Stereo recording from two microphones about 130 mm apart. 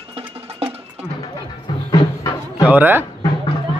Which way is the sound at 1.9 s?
25° left (ahead or behind).